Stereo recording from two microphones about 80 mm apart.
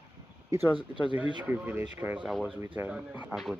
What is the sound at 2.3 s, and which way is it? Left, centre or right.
Speech, centre.